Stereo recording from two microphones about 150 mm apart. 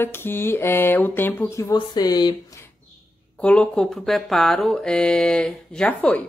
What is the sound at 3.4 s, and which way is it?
Speech, 5° left (ahead or behind).